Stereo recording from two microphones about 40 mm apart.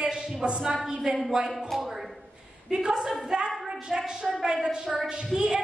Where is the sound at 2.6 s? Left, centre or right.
Centre.